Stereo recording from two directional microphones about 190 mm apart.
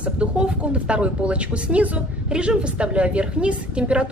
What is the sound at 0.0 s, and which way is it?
Speech, 5° right (ahead or behind).